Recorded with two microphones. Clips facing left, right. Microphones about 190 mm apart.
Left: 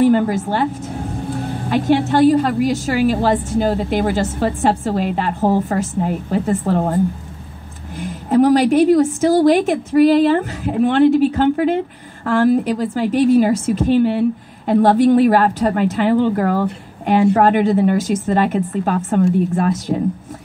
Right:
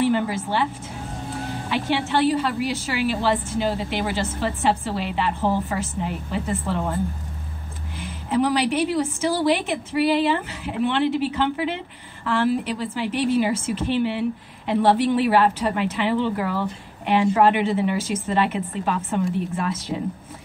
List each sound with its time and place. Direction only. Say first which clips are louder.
0.0 s a sound: left 7 dB; 45° left (ahead or behind)
1.7 s a woman's voice: left 8 dB; 45° left (ahead or behind)
8.0 s a woman's voice: left 8 dB; 45° left (ahead or behind)